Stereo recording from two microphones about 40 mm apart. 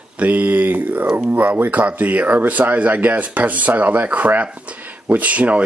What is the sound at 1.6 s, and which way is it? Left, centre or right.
Speech, right.